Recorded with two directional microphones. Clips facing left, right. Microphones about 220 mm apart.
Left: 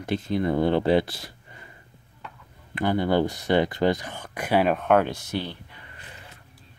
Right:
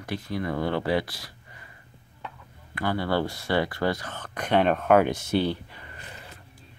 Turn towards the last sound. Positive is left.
turn(degrees=-30)  # may be behind; listen again after turning